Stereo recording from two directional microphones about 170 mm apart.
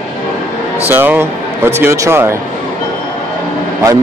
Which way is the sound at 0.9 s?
10° right (ahead or behind).